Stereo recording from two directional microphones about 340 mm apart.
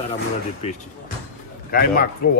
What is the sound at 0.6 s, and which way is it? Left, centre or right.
Speech, centre.